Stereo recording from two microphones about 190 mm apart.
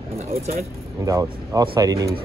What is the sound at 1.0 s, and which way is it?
Speech, 15° right (ahead or behind).